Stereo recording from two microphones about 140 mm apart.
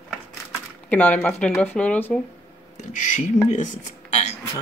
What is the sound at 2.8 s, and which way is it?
Speech, 60° left (ahead or behind).